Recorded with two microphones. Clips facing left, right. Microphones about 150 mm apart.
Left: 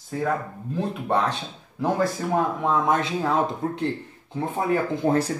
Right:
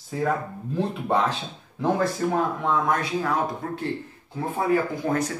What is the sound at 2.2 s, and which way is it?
Speech, centre (ahead or behind).